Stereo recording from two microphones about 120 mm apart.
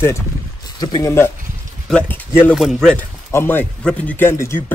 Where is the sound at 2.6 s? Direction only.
5° left (ahead or behind).